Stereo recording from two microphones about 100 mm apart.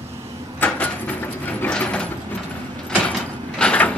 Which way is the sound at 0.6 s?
20° left (ahead or behind).